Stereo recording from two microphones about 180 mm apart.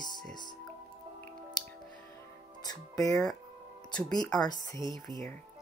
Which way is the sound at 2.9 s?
20° left (ahead or behind).